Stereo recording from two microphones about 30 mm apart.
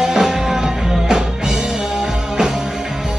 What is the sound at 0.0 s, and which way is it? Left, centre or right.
Music, centre.